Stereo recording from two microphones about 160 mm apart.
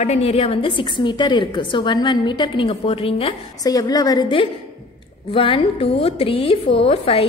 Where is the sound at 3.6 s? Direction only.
20° left (ahead or behind).